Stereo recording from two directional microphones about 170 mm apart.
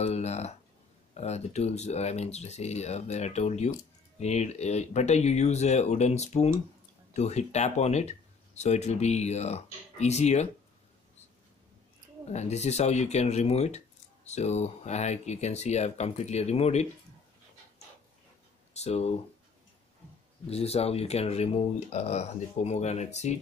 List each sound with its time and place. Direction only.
0.0 s speech: 40° left (ahead or behind)
12.3 s speech: 40° left (ahead or behind)
18.7 s speech: 40° left (ahead or behind)
20.4 s speech: 35° left (ahead or behind)